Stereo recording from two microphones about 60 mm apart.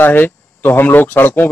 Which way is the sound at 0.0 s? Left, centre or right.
Left.